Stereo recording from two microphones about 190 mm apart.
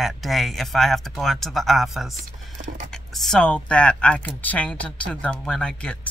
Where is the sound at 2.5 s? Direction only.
45° right (ahead or behind).